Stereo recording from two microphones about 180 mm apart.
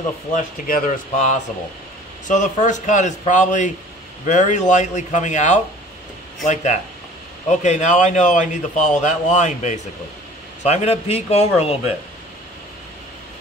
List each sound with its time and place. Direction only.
0.7 s a man's voice: 50° left (ahead or behind)